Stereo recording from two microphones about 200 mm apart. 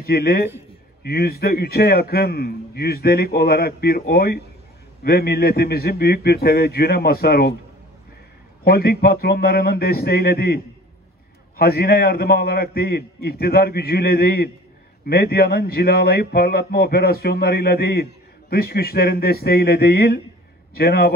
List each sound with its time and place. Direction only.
0.0 s a man's voice: 50° left (ahead or behind)
8.6 s a man's voice: 50° left (ahead or behind)